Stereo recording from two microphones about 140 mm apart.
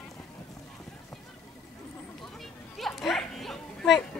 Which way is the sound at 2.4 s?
Centre (ahead or behind).